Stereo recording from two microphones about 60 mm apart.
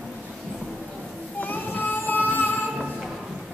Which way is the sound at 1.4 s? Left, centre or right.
Left.